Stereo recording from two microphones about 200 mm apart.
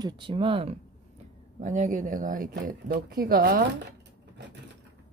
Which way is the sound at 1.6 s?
40° right (ahead or behind).